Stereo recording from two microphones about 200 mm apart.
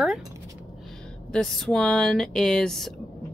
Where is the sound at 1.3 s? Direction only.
5° left (ahead or behind).